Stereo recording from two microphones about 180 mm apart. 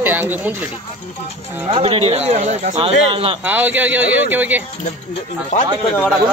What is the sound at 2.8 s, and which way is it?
Speech, 30° right (ahead or behind).